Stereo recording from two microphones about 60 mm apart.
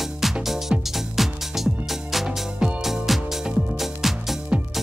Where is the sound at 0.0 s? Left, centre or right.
Centre.